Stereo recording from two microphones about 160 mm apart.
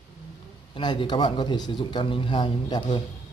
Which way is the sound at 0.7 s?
30° left (ahead or behind).